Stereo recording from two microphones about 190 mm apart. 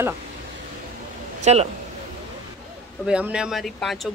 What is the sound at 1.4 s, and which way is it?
Speech, 35° right (ahead or behind).